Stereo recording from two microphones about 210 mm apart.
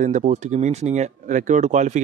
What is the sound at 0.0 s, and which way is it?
Speech, 35° right (ahead or behind).